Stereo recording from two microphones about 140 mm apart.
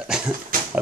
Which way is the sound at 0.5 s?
90° right.